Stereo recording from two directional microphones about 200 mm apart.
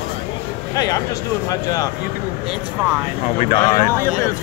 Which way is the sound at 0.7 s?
20° left (ahead or behind).